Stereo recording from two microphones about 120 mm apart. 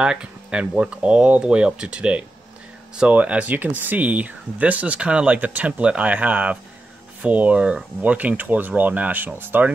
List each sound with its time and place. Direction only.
0.0 s speech: 5° right (ahead or behind)